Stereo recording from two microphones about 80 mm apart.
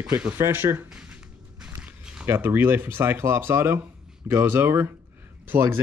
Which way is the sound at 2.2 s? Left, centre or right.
Right.